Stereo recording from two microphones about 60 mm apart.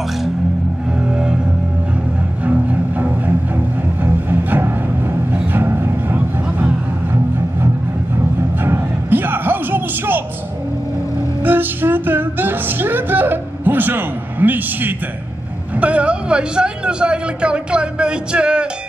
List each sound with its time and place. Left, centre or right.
2.4 s music: right
8.6 s a sound: right
11.4 s music: right
15.8 s speech: right